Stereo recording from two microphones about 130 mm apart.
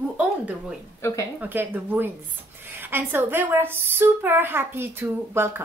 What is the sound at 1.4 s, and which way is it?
A woman's voice, 15° right (ahead or behind).